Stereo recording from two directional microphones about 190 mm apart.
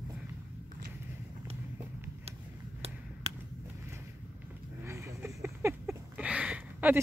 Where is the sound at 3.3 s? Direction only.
30° right (ahead or behind).